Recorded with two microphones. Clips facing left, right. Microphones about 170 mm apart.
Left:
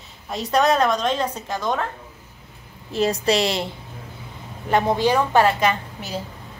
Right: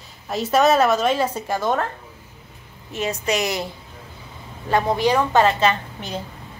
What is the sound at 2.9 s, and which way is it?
Speech, 35° left (ahead or behind).